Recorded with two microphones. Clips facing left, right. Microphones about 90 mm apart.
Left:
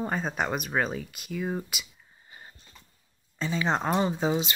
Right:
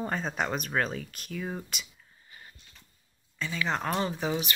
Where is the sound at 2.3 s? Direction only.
30° left (ahead or behind).